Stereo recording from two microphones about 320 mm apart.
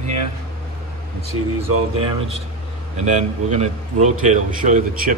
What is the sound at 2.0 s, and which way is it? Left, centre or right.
Speech, centre.